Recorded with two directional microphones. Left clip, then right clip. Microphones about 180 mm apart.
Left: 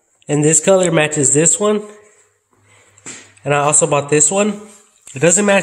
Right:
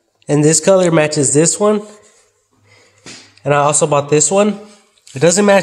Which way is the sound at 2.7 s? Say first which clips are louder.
Even; 5° right (ahead or behind).